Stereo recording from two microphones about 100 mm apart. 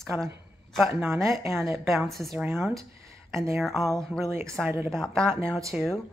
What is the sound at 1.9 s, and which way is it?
Speech, centre (ahead or behind).